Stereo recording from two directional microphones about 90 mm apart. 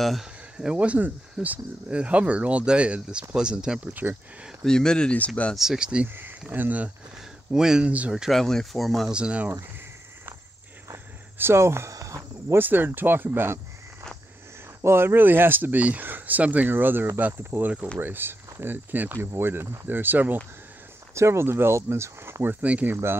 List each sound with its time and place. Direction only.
0.0 s speech: centre (ahead or behind)
3.9 s speech: 20° right (ahead or behind)
4.6 s speech: 10° left (ahead or behind)
5.6 s speech: 5° right (ahead or behind)
7.5 s speech: 5° right (ahead or behind)
9.1 s speech: 15° right (ahead or behind)
11.3 s cricket: 25° right (ahead or behind)
12.5 s speech: 25° right (ahead or behind)
14.8 s speech: 30° right (ahead or behind)
21.1 s speech: 30° right (ahead or behind)